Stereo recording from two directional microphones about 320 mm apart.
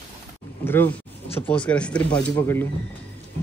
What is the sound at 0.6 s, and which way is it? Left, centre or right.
Speech, centre.